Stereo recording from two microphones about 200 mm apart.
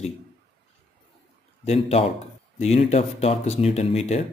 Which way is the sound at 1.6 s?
35° left (ahead or behind).